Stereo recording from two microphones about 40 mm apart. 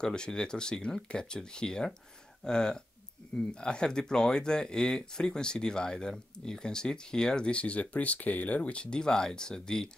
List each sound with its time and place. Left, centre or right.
0.0 s speech: centre
7.5 s speech: left
8.9 s speech: centre